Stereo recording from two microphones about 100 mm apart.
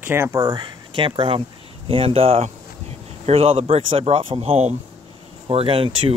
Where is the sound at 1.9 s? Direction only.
70° right (ahead or behind).